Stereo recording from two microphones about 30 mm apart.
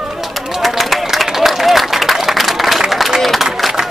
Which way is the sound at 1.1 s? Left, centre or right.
Centre.